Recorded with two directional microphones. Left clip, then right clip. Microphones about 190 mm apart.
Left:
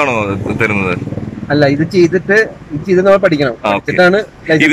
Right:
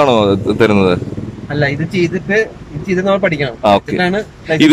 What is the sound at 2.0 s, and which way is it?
Speech, centre (ahead or behind).